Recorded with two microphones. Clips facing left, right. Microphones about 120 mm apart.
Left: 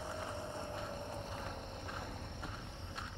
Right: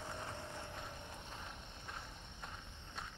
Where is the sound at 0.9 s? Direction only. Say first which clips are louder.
Left 7 dB; 40° left (ahead or behind).